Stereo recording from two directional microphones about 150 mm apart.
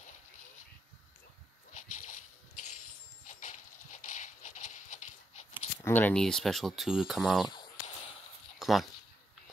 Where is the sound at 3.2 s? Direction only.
55° left (ahead or behind).